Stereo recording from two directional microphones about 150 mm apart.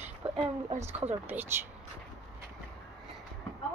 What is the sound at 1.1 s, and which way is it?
Speech, 15° right (ahead or behind).